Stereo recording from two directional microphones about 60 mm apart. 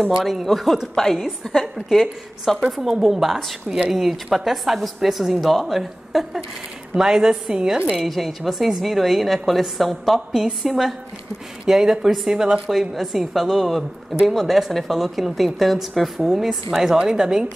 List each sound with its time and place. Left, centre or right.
0.2 s a woman's voice: centre
8.0 s a woman's voice: centre